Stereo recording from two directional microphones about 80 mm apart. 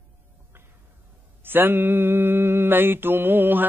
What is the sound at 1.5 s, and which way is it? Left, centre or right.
Mantra, right.